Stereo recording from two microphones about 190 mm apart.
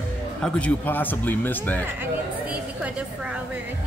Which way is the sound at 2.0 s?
5° right (ahead or behind).